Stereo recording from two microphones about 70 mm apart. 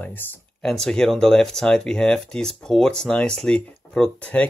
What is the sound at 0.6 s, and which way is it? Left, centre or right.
Speech, centre.